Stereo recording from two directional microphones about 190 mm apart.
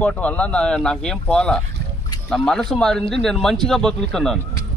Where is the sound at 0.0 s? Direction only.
5° left (ahead or behind).